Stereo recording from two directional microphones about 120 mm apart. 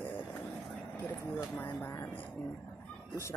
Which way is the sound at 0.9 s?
20° left (ahead or behind).